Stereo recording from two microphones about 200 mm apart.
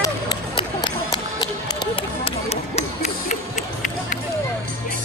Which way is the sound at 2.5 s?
35° left (ahead or behind).